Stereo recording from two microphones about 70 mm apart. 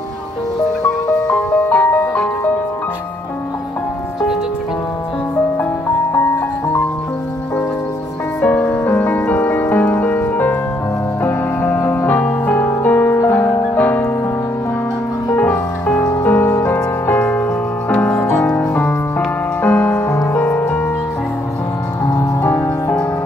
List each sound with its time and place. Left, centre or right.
0.8 s music: left
8.4 s music: left
12.1 s music: left
15.3 s music: left
22.4 s music: left